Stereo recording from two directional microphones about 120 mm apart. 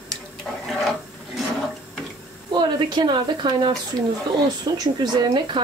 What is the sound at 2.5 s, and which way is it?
Speech, 40° right (ahead or behind).